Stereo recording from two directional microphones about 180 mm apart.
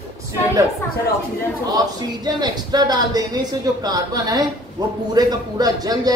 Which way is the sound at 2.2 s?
20° right (ahead or behind).